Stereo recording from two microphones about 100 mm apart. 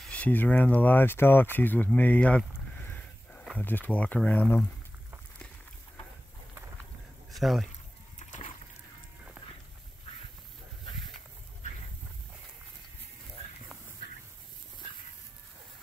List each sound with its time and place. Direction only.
0.1 s speech: 15° left (ahead or behind)
1.9 s a sound: 15° left (ahead or behind)
3.5 s speech: 20° left (ahead or behind)
7.3 s speech: centre (ahead or behind)